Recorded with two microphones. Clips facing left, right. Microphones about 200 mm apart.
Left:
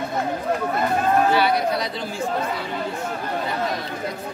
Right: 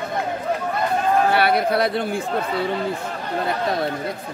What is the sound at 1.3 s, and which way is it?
Chatter, 60° right (ahead or behind).